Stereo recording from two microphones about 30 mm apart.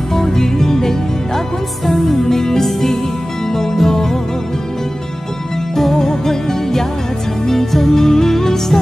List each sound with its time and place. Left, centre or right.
0.1 s music: centre
5.8 s music: centre